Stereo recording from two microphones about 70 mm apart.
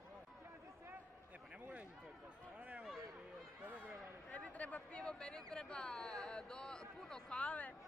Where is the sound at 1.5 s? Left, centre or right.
Right.